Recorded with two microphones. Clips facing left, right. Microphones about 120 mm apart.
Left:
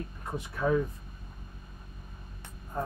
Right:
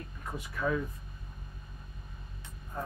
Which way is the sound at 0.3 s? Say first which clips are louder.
Left 4 dB; 30° left (ahead or behind).